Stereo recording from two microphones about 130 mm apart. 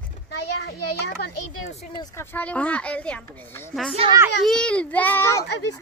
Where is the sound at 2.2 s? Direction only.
10° left (ahead or behind).